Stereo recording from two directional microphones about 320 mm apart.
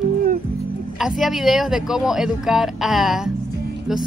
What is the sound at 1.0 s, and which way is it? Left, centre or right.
Speech, centre.